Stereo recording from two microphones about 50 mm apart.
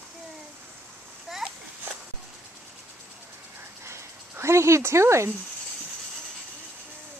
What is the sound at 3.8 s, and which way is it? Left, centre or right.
Dog, right.